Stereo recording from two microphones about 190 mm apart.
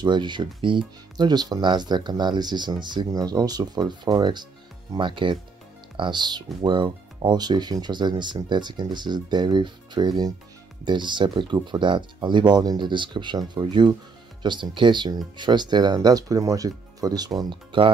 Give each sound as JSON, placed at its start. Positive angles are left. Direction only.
{"t": 0.0, "sound": "speech", "side_deg": -25}